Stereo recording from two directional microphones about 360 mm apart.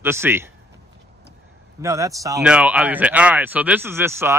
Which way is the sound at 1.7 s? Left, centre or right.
Centre.